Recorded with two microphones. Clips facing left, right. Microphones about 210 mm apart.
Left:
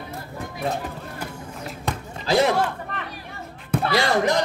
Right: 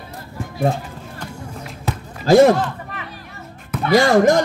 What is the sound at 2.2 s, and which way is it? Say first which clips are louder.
Speech: right 9 dB; 45° right (ahead or behind).